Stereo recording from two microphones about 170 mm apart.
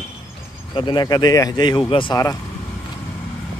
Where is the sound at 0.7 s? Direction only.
25° left (ahead or behind).